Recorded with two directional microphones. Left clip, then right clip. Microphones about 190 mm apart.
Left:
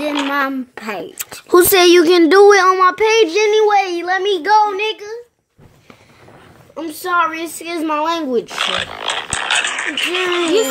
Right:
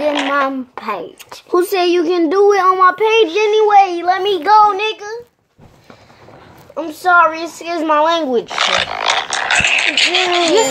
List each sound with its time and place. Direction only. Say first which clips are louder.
0.3 s a child's voice: right 2 dB; 55° left (ahead or behind)
6.7 s a child's voice: right 6 dB; 50° left (ahead or behind)
8.5 s speech: right 4 dB; 25° left (ahead or behind)
9.8 s speech: right 5 dB; 15° left (ahead or behind)